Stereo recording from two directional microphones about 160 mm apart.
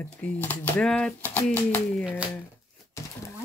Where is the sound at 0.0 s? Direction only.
10° left (ahead or behind).